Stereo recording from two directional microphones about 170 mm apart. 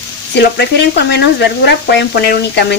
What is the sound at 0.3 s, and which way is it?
Speech, 80° left.